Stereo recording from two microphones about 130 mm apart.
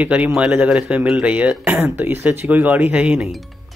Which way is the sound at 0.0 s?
10° right (ahead or behind).